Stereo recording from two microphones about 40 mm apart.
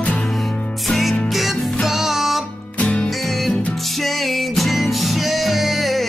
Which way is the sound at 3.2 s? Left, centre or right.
Centre.